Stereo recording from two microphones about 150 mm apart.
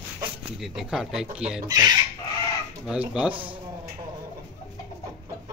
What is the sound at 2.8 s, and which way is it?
Speech, 10° right (ahead or behind).